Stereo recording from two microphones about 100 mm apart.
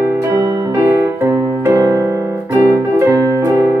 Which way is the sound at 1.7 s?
40° right (ahead or behind).